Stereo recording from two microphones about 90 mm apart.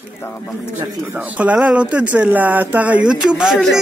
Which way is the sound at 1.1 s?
15° right (ahead or behind).